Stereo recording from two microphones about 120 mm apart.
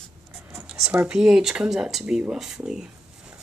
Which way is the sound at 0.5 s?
15° right (ahead or behind).